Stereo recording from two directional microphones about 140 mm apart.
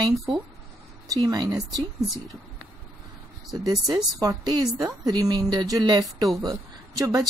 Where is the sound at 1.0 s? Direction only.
25° right (ahead or behind).